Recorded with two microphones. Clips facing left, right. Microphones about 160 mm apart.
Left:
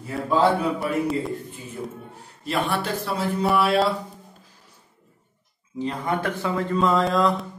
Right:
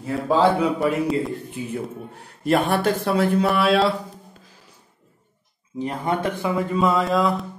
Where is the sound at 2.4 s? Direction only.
55° right (ahead or behind).